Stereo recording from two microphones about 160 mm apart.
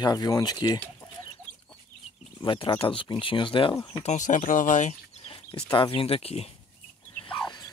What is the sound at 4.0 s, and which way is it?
Speech, 50° left (ahead or behind).